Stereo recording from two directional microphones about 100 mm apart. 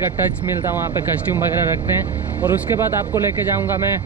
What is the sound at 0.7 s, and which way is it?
Speech, 20° right (ahead or behind).